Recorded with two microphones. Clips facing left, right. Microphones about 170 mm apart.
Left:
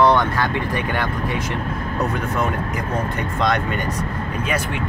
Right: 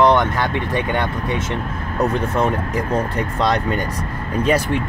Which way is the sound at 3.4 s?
35° right (ahead or behind).